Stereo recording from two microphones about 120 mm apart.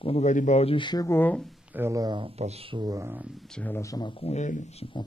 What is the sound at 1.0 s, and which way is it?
Speech, 20° left (ahead or behind).